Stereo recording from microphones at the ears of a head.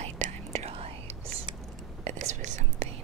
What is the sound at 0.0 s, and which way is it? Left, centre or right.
Whispering, right.